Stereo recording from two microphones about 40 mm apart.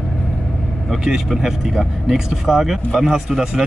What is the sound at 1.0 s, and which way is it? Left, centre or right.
Speech, centre.